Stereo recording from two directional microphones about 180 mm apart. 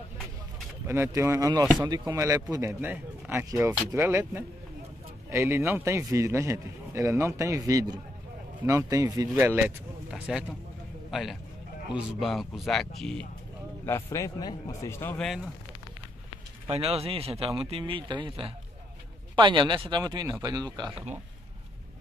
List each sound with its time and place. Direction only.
0.8 s a man's voice: 15° right (ahead or behind)
9.3 s a man's voice: 10° right (ahead or behind)
14.1 s speech: 20° left (ahead or behind)
15.2 s a man's voice: centre (ahead or behind)
16.6 s a man's voice: 35° right (ahead or behind)